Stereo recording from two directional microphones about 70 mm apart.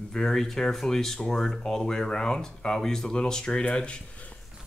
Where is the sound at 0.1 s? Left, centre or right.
Centre.